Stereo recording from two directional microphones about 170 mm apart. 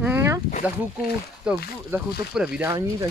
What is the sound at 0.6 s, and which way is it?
Speech, 10° right (ahead or behind).